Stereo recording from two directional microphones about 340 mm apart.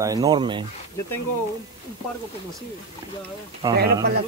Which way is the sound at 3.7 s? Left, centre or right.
Right.